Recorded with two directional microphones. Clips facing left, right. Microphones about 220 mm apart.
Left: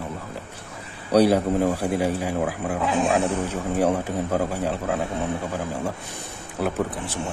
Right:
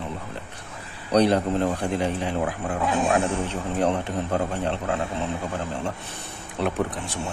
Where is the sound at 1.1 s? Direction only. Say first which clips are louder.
Left 2 dB; 5° left (ahead or behind).